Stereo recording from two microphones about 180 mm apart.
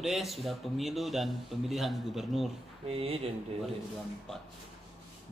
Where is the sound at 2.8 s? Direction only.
30° right (ahead or behind).